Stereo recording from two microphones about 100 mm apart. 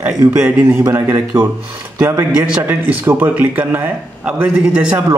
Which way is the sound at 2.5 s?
15° right (ahead or behind).